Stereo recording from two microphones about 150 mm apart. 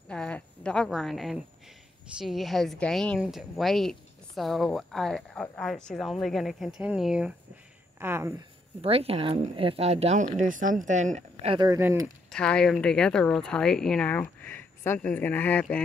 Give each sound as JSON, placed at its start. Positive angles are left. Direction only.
{"t": 0.1, "sound": "a woman's voice", "side_deg": 5}
{"t": 8.8, "sound": "a woman's voice", "side_deg": -40}
{"t": 11.5, "sound": "speech", "side_deg": -25}
{"t": 12.3, "sound": "speech", "side_deg": 5}